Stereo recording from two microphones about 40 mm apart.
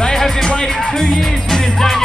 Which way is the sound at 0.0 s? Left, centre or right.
Centre.